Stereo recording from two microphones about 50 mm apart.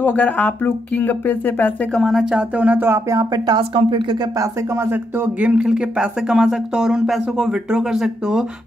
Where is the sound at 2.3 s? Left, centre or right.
Right.